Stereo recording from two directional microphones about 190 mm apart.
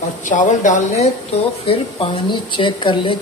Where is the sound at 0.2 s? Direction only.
40° left (ahead or behind).